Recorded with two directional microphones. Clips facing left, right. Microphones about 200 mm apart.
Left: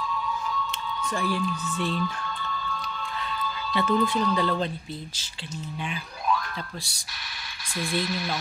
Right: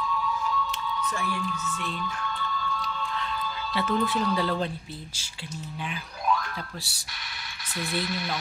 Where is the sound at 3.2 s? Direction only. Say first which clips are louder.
Even; centre (ahead or behind).